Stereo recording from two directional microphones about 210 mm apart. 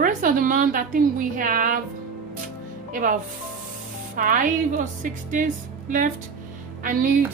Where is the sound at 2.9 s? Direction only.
40° right (ahead or behind).